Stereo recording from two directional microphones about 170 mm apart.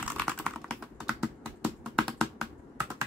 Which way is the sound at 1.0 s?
10° right (ahead or behind).